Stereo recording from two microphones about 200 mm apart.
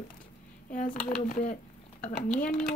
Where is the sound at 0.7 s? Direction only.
40° left (ahead or behind).